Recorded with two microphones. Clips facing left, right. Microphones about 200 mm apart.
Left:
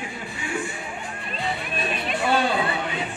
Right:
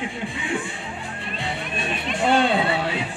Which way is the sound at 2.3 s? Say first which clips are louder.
Right 4 dB; 25° right (ahead or behind).